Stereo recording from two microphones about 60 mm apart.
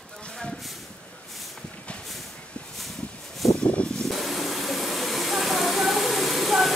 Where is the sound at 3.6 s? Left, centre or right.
Centre.